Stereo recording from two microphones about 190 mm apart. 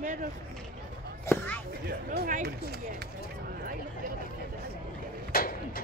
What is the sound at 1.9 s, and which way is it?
Speech, 50° right (ahead or behind).